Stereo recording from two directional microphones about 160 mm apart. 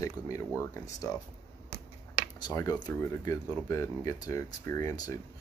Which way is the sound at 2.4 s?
20° left (ahead or behind).